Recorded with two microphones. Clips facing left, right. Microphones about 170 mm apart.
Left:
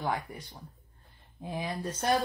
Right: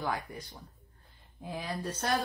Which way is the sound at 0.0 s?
20° left (ahead or behind).